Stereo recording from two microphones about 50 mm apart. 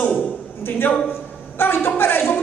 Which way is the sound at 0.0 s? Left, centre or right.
Left.